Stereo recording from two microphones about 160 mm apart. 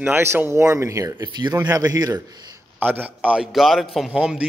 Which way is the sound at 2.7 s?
10° right (ahead or behind).